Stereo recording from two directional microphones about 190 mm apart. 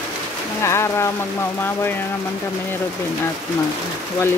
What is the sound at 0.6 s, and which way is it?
Speech, 15° left (ahead or behind).